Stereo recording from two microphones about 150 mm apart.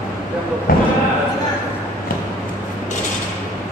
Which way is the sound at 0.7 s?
75° left (ahead or behind).